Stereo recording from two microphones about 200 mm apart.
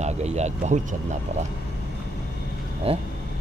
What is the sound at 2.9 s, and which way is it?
Speech, 30° right (ahead or behind).